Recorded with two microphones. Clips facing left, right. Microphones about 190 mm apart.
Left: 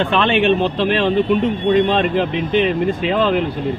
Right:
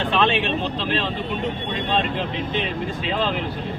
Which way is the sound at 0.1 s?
70° left (ahead or behind).